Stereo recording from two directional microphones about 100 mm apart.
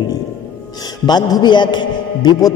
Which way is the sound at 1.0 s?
45° left (ahead or behind).